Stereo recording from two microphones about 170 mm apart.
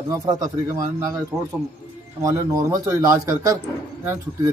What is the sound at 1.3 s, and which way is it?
A man's voice, 10° right (ahead or behind).